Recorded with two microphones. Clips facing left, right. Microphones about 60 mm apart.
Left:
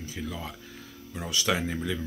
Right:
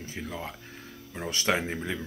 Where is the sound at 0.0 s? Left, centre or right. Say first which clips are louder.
Even; right.